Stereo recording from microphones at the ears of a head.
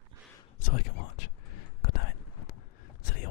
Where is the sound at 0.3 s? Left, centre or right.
Left.